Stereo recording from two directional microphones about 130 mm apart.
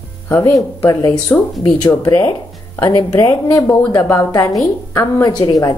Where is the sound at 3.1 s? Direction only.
25° left (ahead or behind).